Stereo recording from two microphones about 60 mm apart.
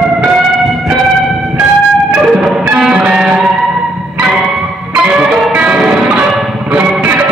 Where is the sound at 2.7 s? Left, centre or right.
Centre.